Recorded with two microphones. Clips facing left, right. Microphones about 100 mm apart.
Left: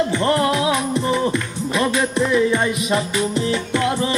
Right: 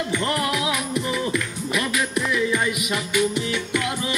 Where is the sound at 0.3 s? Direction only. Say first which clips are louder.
Left 6 dB; 30° left (ahead or behind).